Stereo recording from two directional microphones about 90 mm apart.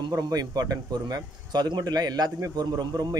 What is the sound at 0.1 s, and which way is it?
Speech, 45° right (ahead or behind).